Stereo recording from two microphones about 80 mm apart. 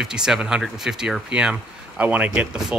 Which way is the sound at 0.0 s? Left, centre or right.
Centre.